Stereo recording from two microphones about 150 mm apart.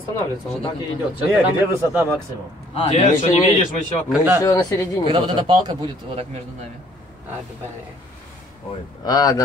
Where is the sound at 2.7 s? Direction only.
45° left (ahead or behind).